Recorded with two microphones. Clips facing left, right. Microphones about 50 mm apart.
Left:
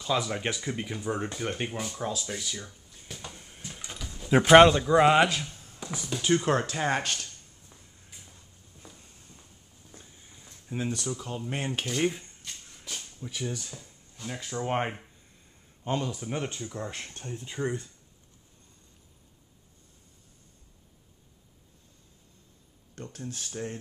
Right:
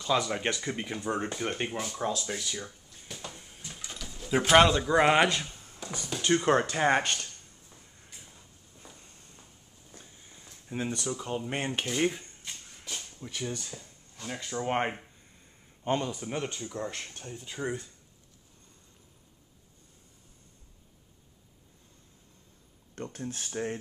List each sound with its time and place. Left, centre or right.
0.1 s speech: centre
4.4 s speech: centre
4.8 s speech: centre
5.4 s a sound: centre
5.8 s a sound: centre
6.0 s speech: centre
7.7 s shuffle: centre
8.1 s walk: centre
10.1 s cutlery: centre
12.6 s a sound: centre
13.4 s speech: centre
16.2 s speech: centre
17.6 s speech: centre
22.9 s speech: centre